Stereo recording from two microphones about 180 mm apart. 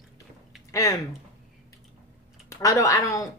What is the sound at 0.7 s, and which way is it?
Speech, 15° left (ahead or behind).